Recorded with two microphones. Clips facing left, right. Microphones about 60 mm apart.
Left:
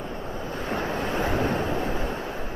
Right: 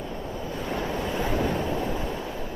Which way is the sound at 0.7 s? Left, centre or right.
Left.